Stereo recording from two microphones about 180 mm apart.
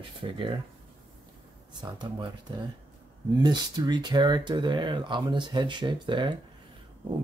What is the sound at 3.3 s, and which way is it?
Speech, 25° right (ahead or behind).